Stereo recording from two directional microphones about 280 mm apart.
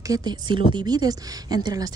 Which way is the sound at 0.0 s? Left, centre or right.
Centre.